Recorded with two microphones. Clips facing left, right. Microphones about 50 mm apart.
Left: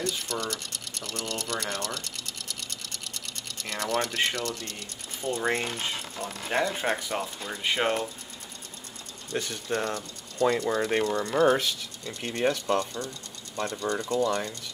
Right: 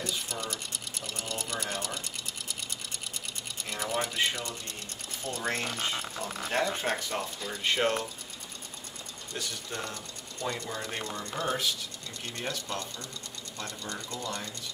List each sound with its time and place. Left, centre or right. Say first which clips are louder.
0.0 s sewing machine: left 4 dB; centre
3.5 s speech: left 4 dB; centre
5.3 s speech: left 5 dB; left
6.6 s speech: left 3 dB; centre
9.3 s speech: left 8 dB; left